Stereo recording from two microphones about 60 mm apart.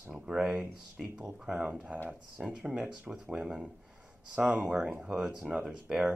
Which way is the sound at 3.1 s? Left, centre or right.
Centre.